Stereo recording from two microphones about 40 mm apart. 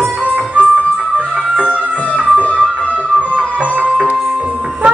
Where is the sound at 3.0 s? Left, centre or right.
Right.